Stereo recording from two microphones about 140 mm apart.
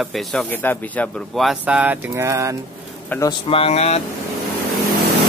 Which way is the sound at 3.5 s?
45° left (ahead or behind).